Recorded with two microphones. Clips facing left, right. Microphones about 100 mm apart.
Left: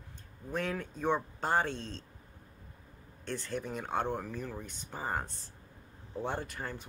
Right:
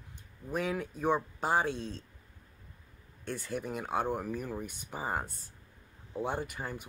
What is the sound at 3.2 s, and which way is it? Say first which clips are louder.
Speech: even; 10° right (ahead or behind).